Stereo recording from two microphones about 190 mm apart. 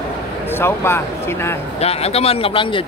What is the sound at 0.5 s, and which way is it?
Speech, 10° left (ahead or behind).